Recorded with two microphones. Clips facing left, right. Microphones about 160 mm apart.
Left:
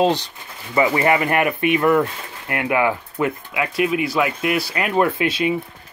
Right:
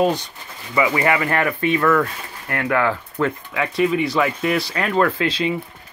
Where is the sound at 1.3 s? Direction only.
15° left (ahead or behind).